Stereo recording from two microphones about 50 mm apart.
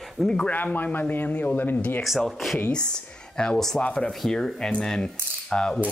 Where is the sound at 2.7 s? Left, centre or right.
Centre.